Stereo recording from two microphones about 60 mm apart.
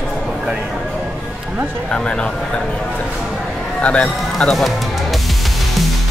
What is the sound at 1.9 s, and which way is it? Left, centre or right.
Speech, centre.